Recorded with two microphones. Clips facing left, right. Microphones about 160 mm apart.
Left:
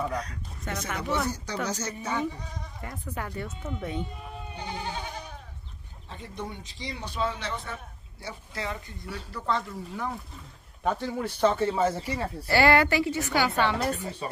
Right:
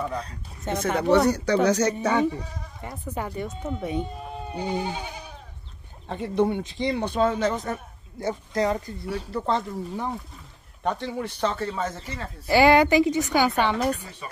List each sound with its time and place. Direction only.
0.2 s speech: 25° right (ahead or behind)
1.1 s speech: 70° right (ahead or behind)
2.8 s a woman's voice: 20° right (ahead or behind)
6.0 s a man's voice: 60° right (ahead or behind); by 10.1 s 25° right (ahead or behind)
10.8 s speech: 5° left (ahead or behind)
12.4 s a woman's voice: 15° right (ahead or behind)
14.2 s speech: 30° left (ahead or behind)